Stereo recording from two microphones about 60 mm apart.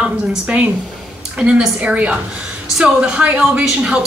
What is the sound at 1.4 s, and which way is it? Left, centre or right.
A woman's voice, centre.